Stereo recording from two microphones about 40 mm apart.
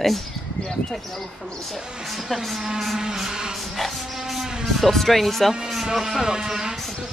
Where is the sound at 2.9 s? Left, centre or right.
Centre.